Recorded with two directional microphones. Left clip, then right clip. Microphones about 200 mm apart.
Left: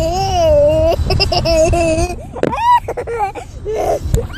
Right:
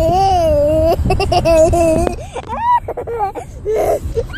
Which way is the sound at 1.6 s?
10° right (ahead or behind).